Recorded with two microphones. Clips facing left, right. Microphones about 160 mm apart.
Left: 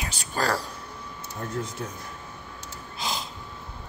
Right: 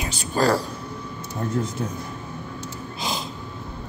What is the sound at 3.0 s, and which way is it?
Gasp, 15° right (ahead or behind).